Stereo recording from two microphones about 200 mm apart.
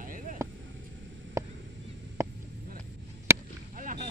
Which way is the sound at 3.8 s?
40° right (ahead or behind).